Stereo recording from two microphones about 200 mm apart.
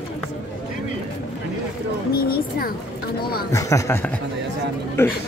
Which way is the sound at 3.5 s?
15° left (ahead or behind).